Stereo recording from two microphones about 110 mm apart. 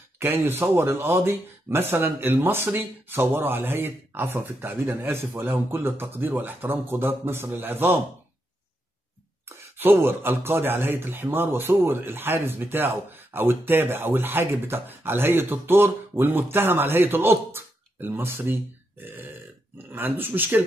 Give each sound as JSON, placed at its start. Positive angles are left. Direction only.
{"t": 0.2, "sound": "a man's voice", "side_deg": -20}
{"t": 9.8, "sound": "a man's voice", "side_deg": -20}